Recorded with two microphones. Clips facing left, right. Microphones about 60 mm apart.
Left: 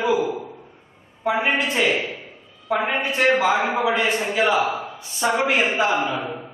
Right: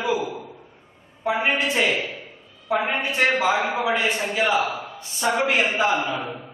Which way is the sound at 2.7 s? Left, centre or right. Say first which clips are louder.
Left 1 dB; centre.